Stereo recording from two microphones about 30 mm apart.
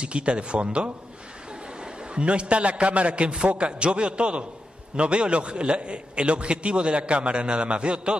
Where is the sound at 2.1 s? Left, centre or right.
Right.